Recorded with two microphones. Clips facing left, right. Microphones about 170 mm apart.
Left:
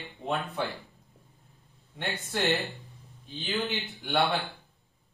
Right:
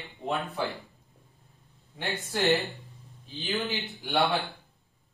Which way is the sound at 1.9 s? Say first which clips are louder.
Right 1 dB; centre (ahead or behind).